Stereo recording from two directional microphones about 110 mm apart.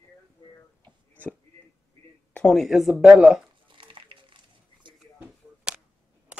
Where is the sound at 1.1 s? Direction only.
15° left (ahead or behind).